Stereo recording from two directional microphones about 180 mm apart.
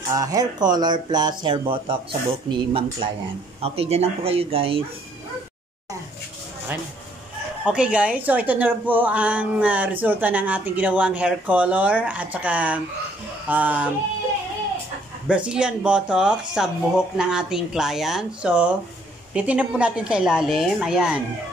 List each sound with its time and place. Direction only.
0.1 s speech: 20° right (ahead or behind)
7.6 s a woman's voice: 5° right (ahead or behind)
15.2 s speech: 5° right (ahead or behind)